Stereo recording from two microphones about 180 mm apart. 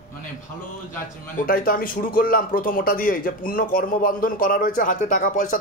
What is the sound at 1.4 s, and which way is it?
Speech, 50° left (ahead or behind).